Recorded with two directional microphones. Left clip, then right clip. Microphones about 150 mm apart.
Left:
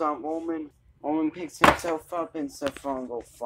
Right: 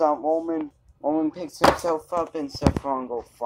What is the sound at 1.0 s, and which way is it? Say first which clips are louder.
Speech: right 3 dB; 30° right (ahead or behind).